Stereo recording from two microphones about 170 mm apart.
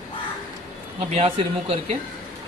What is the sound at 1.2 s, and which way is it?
Speech, 35° right (ahead or behind).